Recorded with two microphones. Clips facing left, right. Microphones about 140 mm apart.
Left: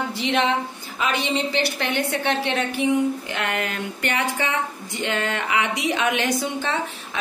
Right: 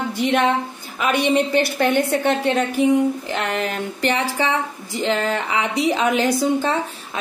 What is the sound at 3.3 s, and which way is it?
A woman's voice, 35° right (ahead or behind).